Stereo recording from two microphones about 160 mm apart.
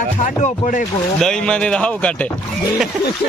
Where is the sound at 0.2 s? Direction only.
50° left (ahead or behind).